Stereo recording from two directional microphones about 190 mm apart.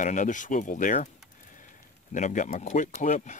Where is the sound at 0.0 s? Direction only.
40° left (ahead or behind).